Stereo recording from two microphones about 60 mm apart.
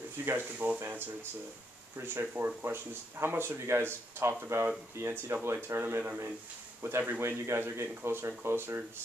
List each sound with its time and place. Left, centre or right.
0.2 s speech: right
2.0 s speech: right